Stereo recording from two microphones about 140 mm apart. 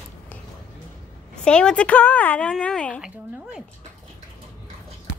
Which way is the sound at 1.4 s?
5° left (ahead or behind).